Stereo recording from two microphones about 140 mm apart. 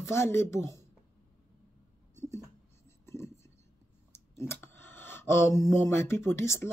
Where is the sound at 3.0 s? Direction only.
20° left (ahead or behind).